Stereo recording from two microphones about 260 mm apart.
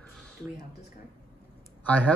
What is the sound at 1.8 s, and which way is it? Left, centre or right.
Speech, centre.